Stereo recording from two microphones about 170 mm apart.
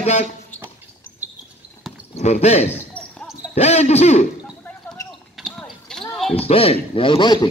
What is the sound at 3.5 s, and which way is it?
Speech, 40° left (ahead or behind).